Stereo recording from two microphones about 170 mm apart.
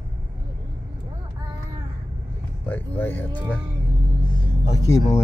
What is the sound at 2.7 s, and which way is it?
Speech, 10° left (ahead or behind).